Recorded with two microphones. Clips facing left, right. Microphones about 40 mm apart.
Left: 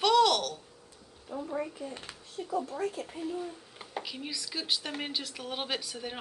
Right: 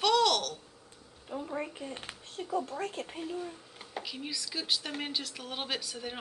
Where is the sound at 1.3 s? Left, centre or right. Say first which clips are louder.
Left 2 dB; right.